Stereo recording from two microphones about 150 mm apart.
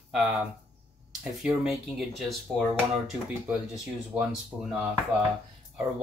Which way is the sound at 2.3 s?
Centre (ahead or behind).